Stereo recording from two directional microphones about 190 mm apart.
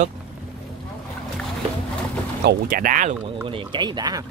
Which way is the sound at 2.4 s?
55° right (ahead or behind).